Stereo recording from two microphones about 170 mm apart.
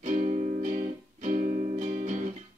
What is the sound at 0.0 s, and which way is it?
Music, 45° right (ahead or behind).